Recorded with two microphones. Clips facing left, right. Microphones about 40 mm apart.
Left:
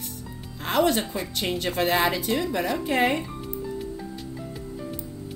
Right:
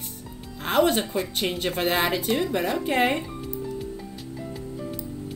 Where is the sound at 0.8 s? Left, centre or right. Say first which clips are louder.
Right 1 dB; centre.